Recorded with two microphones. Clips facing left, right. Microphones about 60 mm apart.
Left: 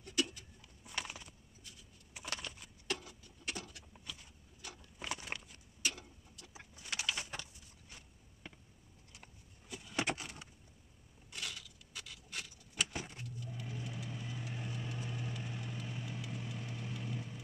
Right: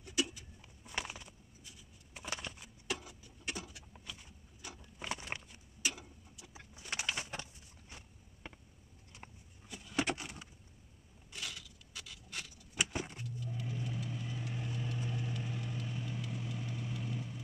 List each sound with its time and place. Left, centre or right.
0.0 s a sound: centre
2.2 s horse: centre
2.5 s a sound: centre
5.5 s tick-tock: centre
6.7 s bird: right
7.9 s vehicle: centre
9.7 s vehicle: centre
11.3 s a sound: centre
12.7 s vehicle: centre
13.2 s vehicle: centre